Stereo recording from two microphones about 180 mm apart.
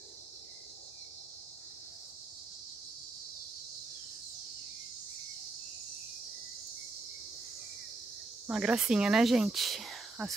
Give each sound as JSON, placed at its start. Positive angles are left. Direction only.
{"t": 8.5, "sound": "speech", "side_deg": -5}